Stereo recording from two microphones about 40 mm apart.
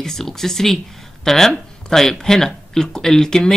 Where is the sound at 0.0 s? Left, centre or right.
Centre.